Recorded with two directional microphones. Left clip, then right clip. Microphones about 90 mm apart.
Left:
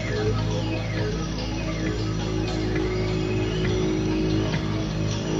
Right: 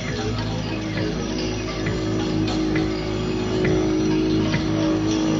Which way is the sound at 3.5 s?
35° left (ahead or behind).